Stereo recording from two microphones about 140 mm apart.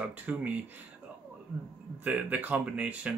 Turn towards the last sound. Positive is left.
turn(degrees=-10)  # may be behind; listen again after turning